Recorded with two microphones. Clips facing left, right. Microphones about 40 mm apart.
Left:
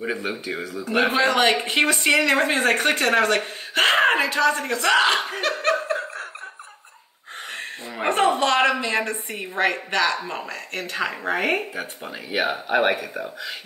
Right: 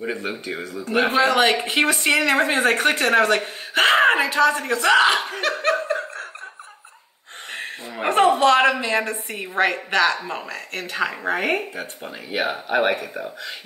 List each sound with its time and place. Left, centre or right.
0.0 s speech: centre
7.5 s speech: centre